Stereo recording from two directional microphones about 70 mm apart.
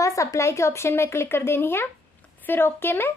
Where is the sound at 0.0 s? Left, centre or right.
Left.